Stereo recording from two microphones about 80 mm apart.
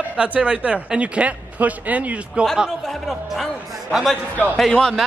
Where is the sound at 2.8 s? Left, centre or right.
Centre.